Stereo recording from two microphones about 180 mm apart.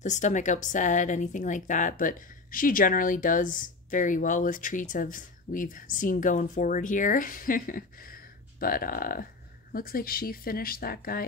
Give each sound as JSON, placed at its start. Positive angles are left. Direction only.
{"t": 0.0, "sound": "a woman's voice", "side_deg": 45}